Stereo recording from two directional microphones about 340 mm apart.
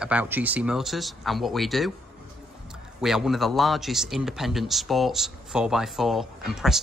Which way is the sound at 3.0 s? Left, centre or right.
Centre.